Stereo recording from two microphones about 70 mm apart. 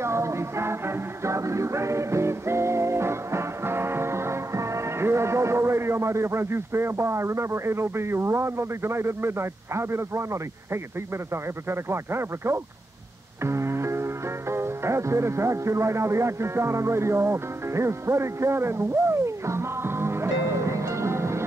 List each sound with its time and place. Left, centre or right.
0.0 s music: right
11.7 s speech: right
13.4 s music: right